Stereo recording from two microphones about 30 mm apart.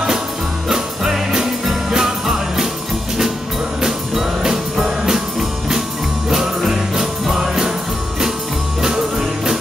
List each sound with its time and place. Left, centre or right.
0.7 s music: centre
3.8 s music: centre
6.3 s music: centre